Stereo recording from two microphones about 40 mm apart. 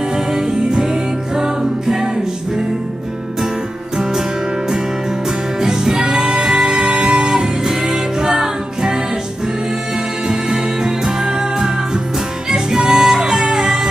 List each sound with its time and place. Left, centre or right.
0.1 s music: centre
3.9 s music: centre
10.2 s music: centre